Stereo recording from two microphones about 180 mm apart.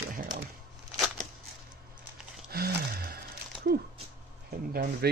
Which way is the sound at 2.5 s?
60° right (ahead or behind).